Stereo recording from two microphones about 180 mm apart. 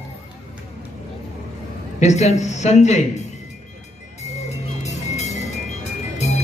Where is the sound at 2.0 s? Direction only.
40° left (ahead or behind).